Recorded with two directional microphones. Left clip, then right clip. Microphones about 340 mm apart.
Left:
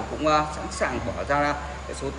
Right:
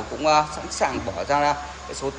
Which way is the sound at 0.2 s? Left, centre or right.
Centre.